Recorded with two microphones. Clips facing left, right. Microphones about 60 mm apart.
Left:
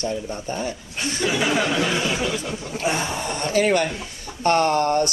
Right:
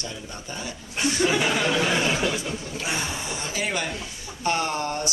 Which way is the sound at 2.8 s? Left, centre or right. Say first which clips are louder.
Left 7 dB; left.